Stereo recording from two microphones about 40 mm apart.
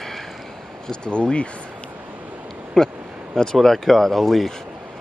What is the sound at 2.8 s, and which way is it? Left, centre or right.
Speech, centre.